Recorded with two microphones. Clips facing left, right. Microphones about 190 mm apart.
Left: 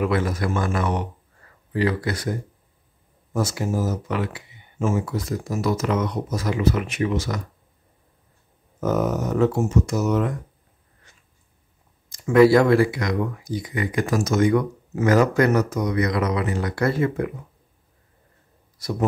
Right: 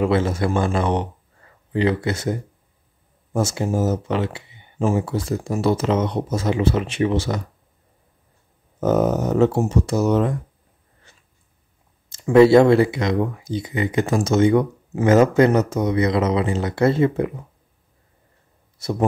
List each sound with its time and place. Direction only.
0.0 s speech: 25° right (ahead or behind)
3.3 s speech: 25° right (ahead or behind)
8.8 s speech: 30° right (ahead or behind)
12.1 s speech: 25° right (ahead or behind)
18.8 s speech: 25° right (ahead or behind)